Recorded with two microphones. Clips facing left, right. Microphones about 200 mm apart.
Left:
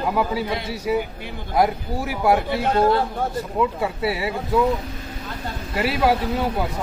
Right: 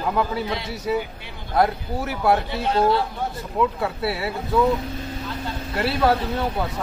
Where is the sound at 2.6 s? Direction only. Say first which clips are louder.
Left 1 dB; 50° left (ahead or behind).